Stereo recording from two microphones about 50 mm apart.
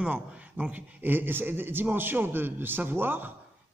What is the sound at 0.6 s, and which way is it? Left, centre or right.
A man's voice, right.